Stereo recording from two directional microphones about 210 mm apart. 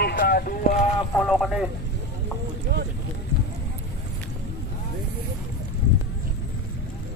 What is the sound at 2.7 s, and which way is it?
Speech, 50° right (ahead or behind).